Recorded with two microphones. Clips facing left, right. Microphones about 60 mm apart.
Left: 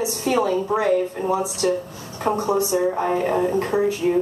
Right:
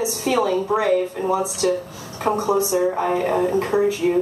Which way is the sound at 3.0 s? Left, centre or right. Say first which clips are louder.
Right 1 dB; right.